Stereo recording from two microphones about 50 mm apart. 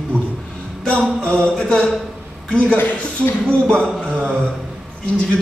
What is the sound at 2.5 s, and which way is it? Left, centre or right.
Speech, left.